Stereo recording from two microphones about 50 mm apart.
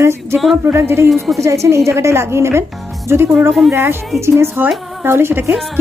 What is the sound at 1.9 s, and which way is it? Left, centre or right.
A woman's voice, right.